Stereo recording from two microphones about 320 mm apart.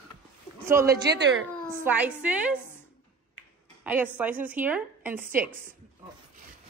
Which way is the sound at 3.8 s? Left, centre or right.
Centre.